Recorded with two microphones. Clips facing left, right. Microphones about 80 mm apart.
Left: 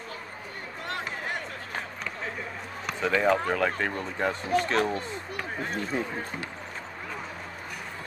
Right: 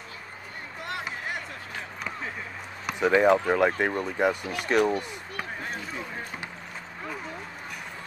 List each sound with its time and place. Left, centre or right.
2.9 s speech: centre
5.6 s speech: centre